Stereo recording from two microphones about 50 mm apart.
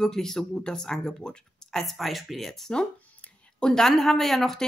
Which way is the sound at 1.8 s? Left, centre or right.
Centre.